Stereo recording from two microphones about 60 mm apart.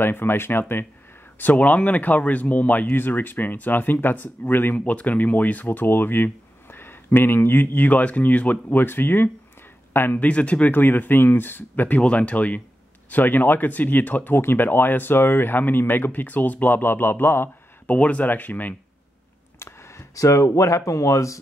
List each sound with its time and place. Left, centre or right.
0.0 s speech: left
1.4 s speech: left
4.7 s speech: left
10.2 s speech: left
12.0 s speech: left
17.8 s speech: left
19.6 s speech: left